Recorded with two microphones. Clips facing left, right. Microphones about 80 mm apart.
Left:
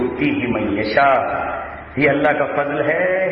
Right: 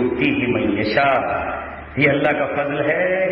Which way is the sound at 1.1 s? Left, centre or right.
Centre.